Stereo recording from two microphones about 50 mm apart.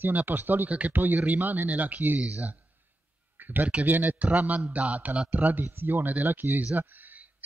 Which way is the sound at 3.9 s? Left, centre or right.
Right.